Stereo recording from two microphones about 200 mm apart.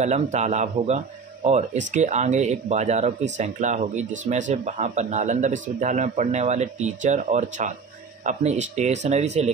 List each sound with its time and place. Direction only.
0.0 s speech: 35° right (ahead or behind)